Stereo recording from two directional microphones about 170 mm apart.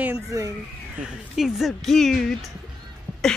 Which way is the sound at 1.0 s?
Centre (ahead or behind).